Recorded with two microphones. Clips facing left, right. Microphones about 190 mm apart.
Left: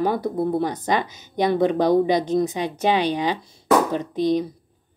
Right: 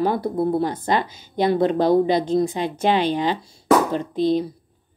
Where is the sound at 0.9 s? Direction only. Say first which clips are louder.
Right 1 dB; 15° left (ahead or behind).